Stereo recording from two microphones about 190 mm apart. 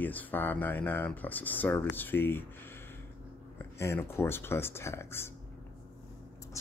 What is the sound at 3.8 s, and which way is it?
Speech, 15° left (ahead or behind).